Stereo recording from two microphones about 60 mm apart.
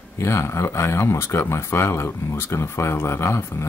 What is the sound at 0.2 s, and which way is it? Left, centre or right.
Speech, left.